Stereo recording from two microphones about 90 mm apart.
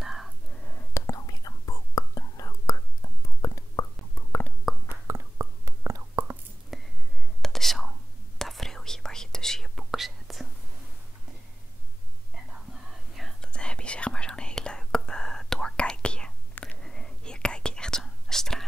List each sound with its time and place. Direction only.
0.0 s whispering: 5° right (ahead or behind)
0.7 s whispering: 20° left (ahead or behind)
1.0 s whispering: 40° left (ahead or behind)
4.8 s whispering: 30° right (ahead or behind)
6.7 s whispering: centre (ahead or behind)
13.1 s whispering: centre (ahead or behind)